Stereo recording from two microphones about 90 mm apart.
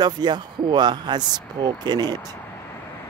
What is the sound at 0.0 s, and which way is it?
Speech, 50° right (ahead or behind).